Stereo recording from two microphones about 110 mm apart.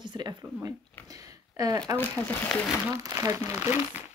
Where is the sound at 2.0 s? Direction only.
15° left (ahead or behind).